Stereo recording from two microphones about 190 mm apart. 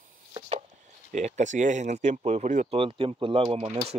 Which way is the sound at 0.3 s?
35° right (ahead or behind).